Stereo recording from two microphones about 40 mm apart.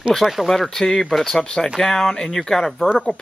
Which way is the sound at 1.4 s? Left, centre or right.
Left.